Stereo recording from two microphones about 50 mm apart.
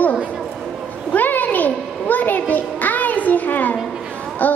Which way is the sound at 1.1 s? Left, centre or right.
Left.